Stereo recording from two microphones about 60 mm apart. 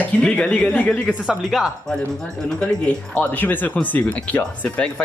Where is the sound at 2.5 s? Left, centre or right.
Left.